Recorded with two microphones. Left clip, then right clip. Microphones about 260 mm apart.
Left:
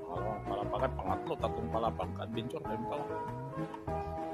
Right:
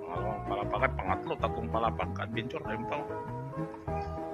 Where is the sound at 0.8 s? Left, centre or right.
Centre.